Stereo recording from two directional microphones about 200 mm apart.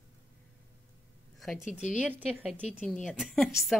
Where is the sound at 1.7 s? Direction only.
40° left (ahead or behind).